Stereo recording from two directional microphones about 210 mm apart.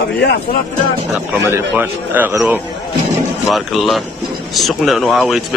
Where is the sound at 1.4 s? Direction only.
10° right (ahead or behind).